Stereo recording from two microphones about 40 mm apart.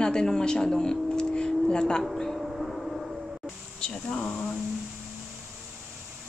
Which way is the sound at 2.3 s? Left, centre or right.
Centre.